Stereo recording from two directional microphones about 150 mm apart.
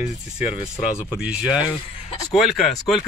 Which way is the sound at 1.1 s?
5° right (ahead or behind).